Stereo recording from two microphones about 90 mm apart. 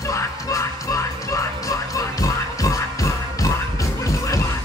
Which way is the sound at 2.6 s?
40° left (ahead or behind).